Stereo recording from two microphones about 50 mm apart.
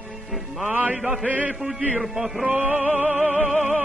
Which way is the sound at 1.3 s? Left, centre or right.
Right.